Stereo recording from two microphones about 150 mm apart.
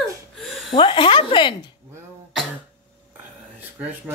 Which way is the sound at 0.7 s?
35° left (ahead or behind).